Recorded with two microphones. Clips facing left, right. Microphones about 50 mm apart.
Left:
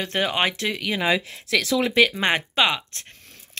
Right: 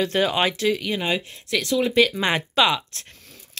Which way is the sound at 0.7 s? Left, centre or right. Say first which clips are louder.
Left 2 dB; left.